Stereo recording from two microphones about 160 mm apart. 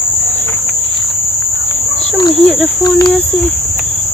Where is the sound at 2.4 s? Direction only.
Centre (ahead or behind).